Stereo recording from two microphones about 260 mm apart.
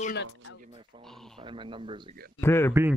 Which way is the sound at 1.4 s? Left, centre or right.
Centre.